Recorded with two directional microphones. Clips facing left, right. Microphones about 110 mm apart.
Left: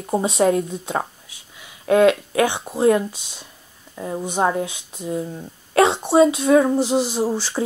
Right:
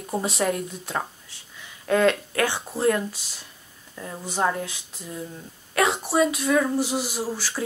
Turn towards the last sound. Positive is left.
turn(degrees=25)  # may be behind; listen again after turning